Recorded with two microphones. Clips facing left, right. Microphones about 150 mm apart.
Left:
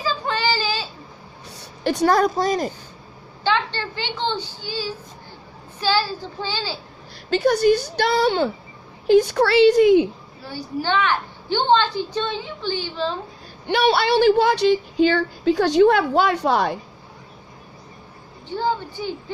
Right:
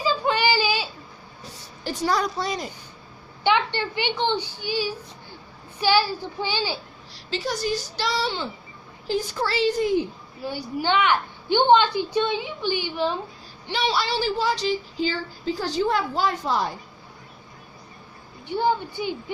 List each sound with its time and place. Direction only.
0.0 s whimper: 15° right (ahead or behind)
1.5 s a woman's voice: 70° left (ahead or behind); by 2.7 s 45° left (ahead or behind)
3.4 s a woman's voice: 15° right (ahead or behind)
7.2 s speech: 55° left (ahead or behind)
9.0 s a woman's voice: 65° left (ahead or behind)
10.4 s a woman's voice: 15° right (ahead or behind)
13.7 s speech: 60° left (ahead or behind)
18.5 s a woman's voice: 15° right (ahead or behind)